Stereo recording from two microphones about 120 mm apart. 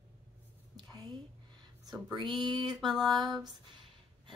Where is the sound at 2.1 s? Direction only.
40° right (ahead or behind).